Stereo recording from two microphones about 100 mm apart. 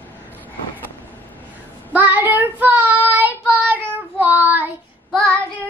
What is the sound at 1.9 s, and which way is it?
Child singing, 15° right (ahead or behind).